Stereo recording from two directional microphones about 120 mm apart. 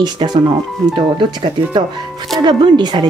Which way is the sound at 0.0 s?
40° right (ahead or behind).